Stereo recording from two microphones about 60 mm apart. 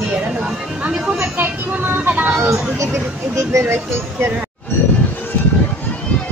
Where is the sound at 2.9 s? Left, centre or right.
Right.